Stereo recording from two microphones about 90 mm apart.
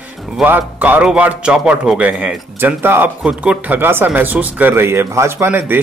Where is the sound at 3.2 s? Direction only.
15° right (ahead or behind).